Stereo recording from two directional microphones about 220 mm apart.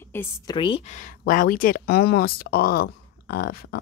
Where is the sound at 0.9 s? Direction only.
40° left (ahead or behind).